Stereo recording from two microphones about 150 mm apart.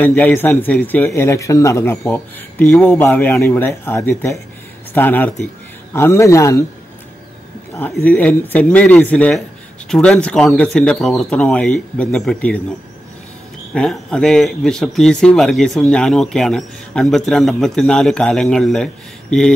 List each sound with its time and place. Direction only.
0.0 s speech: 10° left (ahead or behind)
7.7 s speech: 10° left (ahead or behind)
13.7 s speech: 5° left (ahead or behind)